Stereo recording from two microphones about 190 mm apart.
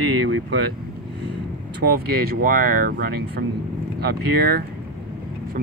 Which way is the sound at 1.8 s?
50° right (ahead or behind).